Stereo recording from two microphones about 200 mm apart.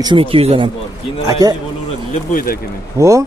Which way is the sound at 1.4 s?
15° right (ahead or behind).